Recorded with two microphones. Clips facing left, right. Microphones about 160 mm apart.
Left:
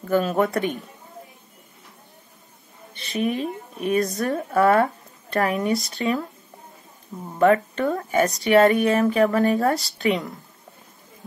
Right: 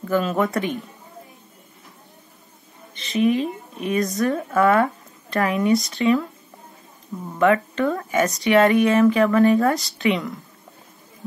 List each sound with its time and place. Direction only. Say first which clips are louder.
0.0 s speech: even; 40° left (ahead or behind)
3.1 s speech: right 5 dB; 45° left (ahead or behind)
7.3 s speech: even; 40° left (ahead or behind)